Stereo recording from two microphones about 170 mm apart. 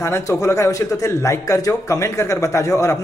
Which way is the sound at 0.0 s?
15° left (ahead or behind).